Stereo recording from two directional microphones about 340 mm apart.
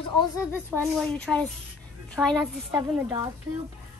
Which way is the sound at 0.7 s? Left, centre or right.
Centre.